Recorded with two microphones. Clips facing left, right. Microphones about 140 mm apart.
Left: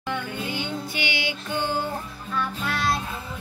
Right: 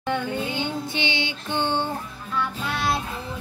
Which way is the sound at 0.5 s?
25° right (ahead or behind).